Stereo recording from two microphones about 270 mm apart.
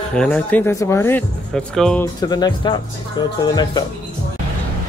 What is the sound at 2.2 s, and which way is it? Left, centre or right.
Speech, centre.